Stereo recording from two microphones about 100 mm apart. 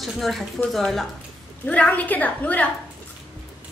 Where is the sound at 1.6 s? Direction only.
15° left (ahead or behind).